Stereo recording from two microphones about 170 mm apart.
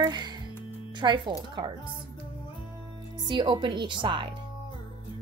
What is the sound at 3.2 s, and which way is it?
Speech, 25° right (ahead or behind).